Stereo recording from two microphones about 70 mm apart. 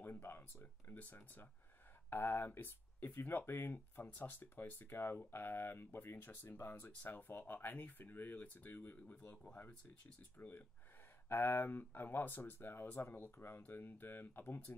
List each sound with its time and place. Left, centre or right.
0.0 s speech: left